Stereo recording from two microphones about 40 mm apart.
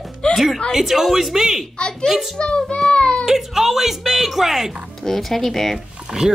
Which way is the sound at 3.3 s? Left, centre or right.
Centre.